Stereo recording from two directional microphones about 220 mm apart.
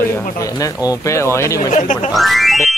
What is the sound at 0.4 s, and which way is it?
Speech, 15° left (ahead or behind).